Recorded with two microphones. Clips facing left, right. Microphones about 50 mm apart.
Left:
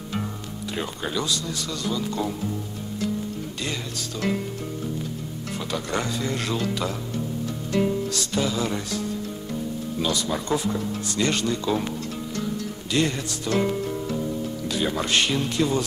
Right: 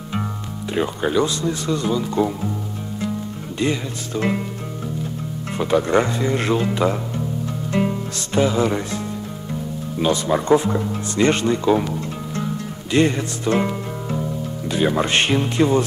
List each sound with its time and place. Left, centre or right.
0.7 s speech: right
3.5 s speech: right
5.6 s speech: right
7.7 s music: right
9.9 s speech: right